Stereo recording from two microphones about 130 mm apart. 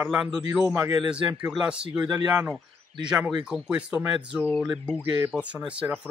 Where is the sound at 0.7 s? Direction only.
20° right (ahead or behind).